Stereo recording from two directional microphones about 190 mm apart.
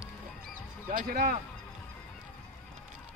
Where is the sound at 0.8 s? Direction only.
50° right (ahead or behind).